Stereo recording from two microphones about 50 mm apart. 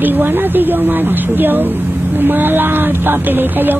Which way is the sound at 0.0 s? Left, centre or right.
Right.